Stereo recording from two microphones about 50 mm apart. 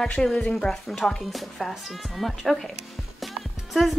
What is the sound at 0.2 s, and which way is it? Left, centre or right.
Speech, centre.